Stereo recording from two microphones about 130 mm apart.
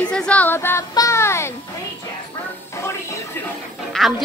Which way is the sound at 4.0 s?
5° left (ahead or behind).